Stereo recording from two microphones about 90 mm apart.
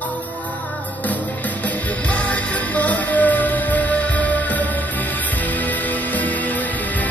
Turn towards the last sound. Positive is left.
turn(degrees=20)  # may be behind; listen again after turning